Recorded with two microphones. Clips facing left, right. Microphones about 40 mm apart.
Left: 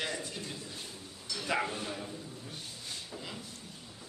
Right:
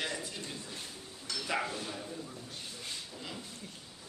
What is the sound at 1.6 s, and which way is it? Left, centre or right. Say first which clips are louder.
Speech: left 1 dB; centre.